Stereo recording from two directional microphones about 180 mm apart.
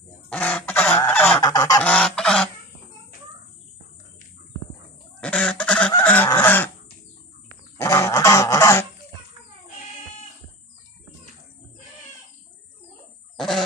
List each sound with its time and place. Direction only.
0.3 s goose: 5° left (ahead or behind)
1.4 s goose: 20° left (ahead or behind)
1.8 s goose: 5° left (ahead or behind)
5.2 s goose: 5° left (ahead or behind)
7.7 s goose: 15° left (ahead or behind)